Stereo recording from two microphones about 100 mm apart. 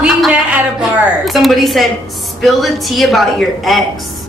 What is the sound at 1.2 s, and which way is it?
A woman's voice, centre (ahead or behind).